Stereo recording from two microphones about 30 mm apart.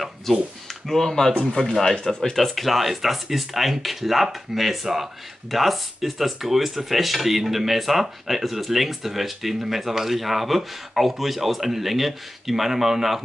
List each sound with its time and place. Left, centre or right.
0.8 s speech: centre
2.3 s speech: centre